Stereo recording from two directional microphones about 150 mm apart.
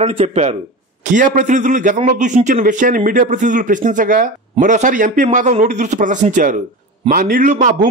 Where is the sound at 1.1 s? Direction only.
55° right (ahead or behind).